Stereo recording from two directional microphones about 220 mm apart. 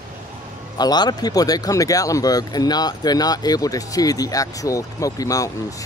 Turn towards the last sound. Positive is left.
turn(degrees=15)  # may be behind; listen again after turning